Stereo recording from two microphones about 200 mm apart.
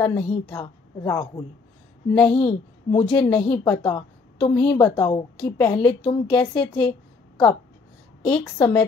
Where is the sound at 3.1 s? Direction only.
5° left (ahead or behind).